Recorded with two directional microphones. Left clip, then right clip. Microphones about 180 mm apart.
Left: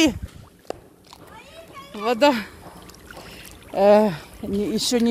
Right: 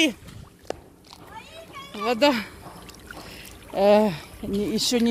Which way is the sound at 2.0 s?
10° left (ahead or behind).